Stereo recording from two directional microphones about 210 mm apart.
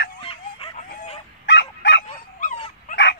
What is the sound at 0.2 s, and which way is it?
Chicken, 25° left (ahead or behind).